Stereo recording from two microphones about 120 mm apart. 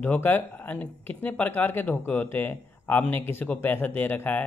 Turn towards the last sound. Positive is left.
turn(degrees=15)  # may be behind; listen again after turning